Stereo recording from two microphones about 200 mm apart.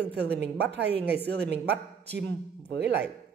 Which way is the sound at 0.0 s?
55° right (ahead or behind).